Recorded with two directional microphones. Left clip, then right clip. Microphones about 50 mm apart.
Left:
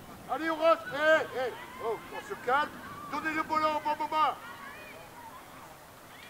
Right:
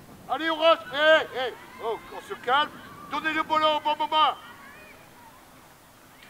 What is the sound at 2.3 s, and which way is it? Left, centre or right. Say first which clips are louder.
Speech: right 5 dB; centre.